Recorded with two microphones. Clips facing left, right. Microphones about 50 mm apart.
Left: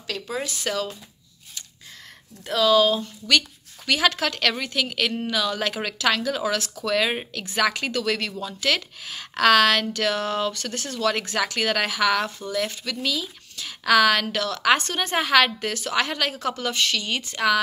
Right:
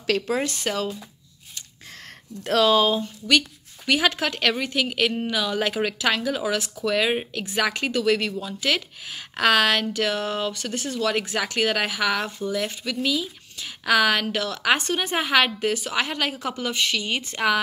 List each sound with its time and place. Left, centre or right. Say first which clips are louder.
0.0 s speech: right 7 dB; right
0.7 s speech: left 3 dB; right
2.8 s speech: left 1 dB; centre